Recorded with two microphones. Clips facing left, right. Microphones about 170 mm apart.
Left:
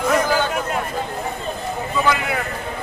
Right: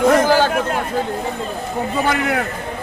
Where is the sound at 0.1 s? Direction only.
55° right (ahead or behind).